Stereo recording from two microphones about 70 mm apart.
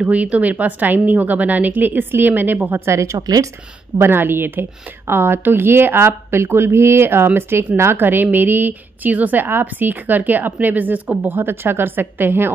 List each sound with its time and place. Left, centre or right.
0.0 s a woman's voice: centre
2.8 s speech: right
3.2 s speech: right
4.0 s a woman's voice: right